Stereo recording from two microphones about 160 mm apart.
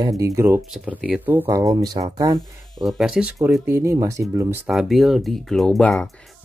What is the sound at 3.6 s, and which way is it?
Speech, 15° right (ahead or behind).